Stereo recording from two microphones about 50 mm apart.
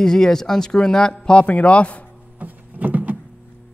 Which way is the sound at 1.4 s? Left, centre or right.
Left.